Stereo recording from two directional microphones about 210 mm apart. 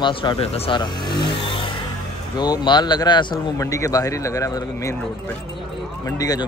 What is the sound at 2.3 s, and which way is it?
Speech, 20° left (ahead or behind).